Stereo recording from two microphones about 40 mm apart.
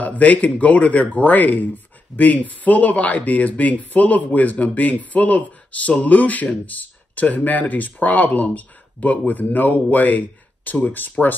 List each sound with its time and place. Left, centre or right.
0.0 s speech: left